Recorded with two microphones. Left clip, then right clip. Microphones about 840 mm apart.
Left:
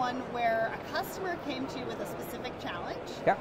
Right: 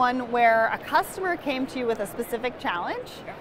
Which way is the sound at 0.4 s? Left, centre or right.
Right.